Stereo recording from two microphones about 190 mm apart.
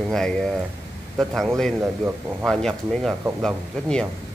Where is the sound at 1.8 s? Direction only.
10° right (ahead or behind).